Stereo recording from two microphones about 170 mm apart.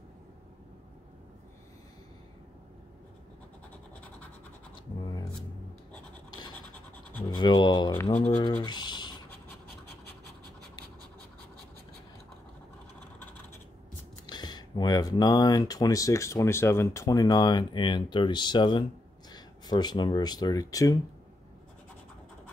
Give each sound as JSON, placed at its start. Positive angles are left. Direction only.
{"t": 6.7, "sound": "scratch", "side_deg": 10}
{"t": 7.3, "sound": "a sound", "side_deg": 25}
{"t": 8.3, "sound": "speech", "side_deg": 30}
{"t": 8.6, "sound": "scratch", "side_deg": 25}
{"t": 14.2, "sound": "speech", "side_deg": 25}